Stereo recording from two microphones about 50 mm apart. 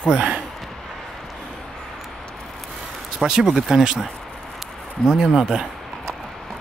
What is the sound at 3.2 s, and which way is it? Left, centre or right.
Speech, centre.